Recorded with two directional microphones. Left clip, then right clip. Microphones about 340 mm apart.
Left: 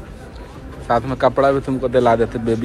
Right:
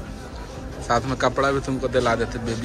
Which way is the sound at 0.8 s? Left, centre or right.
Centre.